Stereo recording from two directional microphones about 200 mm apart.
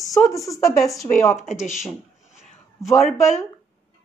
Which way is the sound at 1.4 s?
35° left (ahead or behind).